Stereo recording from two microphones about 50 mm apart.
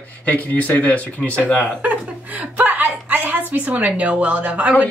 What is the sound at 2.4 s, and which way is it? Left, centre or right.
A woman's voice, right.